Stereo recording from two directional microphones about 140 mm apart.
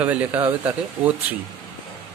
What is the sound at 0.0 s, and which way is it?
Speech, 10° right (ahead or behind).